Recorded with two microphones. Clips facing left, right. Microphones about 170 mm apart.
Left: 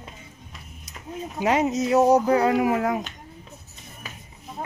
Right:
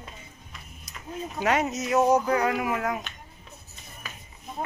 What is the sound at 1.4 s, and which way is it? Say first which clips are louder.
Speech: left 3 dB; 15° left (ahead or behind).